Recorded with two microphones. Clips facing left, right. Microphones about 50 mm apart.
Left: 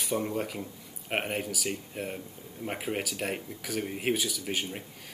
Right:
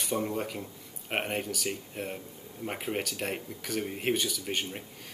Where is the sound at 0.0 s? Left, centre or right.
Centre.